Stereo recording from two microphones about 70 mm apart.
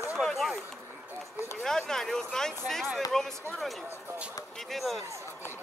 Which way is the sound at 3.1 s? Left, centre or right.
Centre.